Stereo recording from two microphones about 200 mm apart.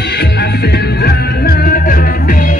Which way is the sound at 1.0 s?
50° left (ahead or behind).